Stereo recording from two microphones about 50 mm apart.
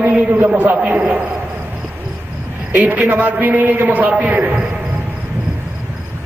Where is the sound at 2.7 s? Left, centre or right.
Right.